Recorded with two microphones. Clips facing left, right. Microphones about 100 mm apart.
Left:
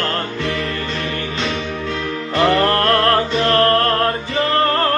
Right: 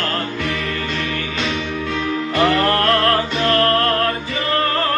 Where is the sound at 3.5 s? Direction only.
35° left (ahead or behind).